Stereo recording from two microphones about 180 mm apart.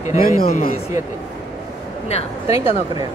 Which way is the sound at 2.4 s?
20° right (ahead or behind).